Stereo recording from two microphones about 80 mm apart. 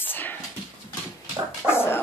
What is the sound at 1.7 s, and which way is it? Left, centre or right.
Speech, left.